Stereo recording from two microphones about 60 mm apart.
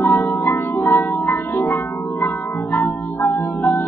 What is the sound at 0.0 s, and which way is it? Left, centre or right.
Music, left.